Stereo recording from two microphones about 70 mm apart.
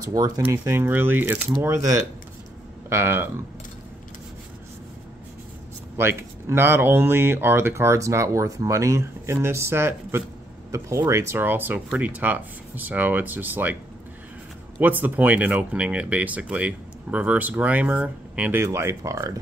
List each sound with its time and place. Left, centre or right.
0.1 s speech: right
0.5 s speech: right
1.6 s speech: right
2.9 s speech: right
5.9 s speech: right
10.7 s speech: right
11.3 s speech: right
14.8 s speech: right
18.5 s speech: right